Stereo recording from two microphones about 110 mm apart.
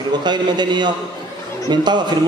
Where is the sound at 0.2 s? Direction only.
40° right (ahead or behind).